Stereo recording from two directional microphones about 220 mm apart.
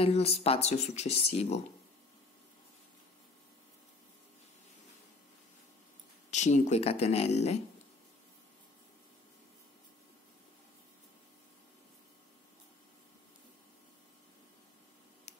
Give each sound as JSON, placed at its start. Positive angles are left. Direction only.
{"t": 0.0, "sound": "speech", "side_deg": 25}
{"t": 6.3, "sound": "speech", "side_deg": 30}